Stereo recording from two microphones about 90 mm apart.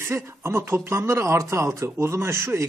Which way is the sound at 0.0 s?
30° right (ahead or behind).